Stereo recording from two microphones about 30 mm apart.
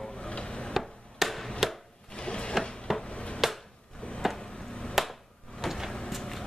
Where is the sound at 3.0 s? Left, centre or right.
Left.